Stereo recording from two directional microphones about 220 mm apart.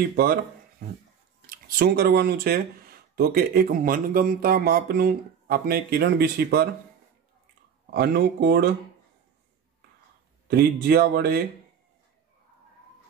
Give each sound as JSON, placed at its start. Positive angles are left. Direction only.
{"t": 1.4, "sound": "speech", "side_deg": -40}
{"t": 7.8, "sound": "speech", "side_deg": -45}
{"t": 10.5, "sound": "speech", "side_deg": -45}